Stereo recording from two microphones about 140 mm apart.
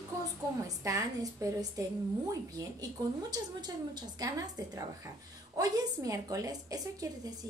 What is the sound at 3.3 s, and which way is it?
A woman's voice, 30° right (ahead or behind).